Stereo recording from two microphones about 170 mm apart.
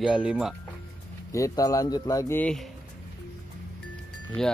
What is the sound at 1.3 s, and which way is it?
Speech, 20° left (ahead or behind).